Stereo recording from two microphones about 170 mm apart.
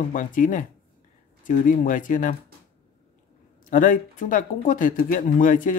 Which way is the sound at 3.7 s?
50° left (ahead or behind).